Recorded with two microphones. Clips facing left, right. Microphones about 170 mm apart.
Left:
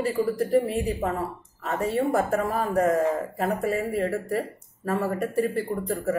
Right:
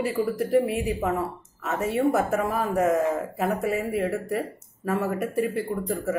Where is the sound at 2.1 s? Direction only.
5° right (ahead or behind).